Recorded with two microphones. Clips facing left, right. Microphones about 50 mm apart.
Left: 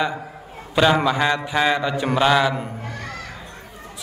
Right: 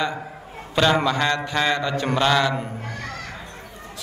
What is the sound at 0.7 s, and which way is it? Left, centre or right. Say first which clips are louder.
Mantra: left 2 dB; centre.